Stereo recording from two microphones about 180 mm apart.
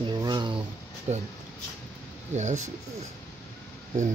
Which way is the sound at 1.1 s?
35° right (ahead or behind).